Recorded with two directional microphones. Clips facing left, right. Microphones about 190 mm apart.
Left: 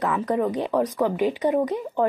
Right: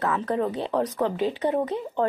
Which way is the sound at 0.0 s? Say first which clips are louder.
Left 2 dB; 15° left (ahead or behind).